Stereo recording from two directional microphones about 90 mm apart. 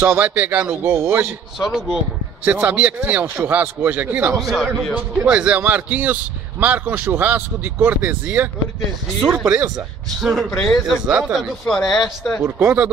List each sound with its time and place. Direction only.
0.0 s speech: 20° right (ahead or behind)
1.6 s speech: 5° right (ahead or behind)
2.4 s speech: 15° right (ahead or behind)
4.4 s speech: centre (ahead or behind)
4.9 s speech: 15° right (ahead or behind)
10.2 s speech: centre (ahead or behind)
11.1 s speech: 15° right (ahead or behind)
11.6 s speech: 5° left (ahead or behind)
12.4 s speech: 15° right (ahead or behind)